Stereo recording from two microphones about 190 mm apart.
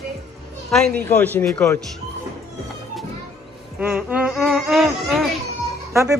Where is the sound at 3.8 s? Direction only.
5° right (ahead or behind).